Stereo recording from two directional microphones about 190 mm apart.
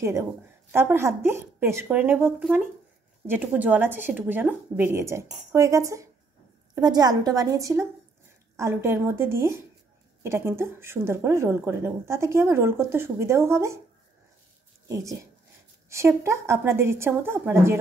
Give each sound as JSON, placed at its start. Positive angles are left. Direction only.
{"t": 0.0, "sound": "a woman's voice", "side_deg": -15}
{"t": 15.9, "sound": "speech", "side_deg": -15}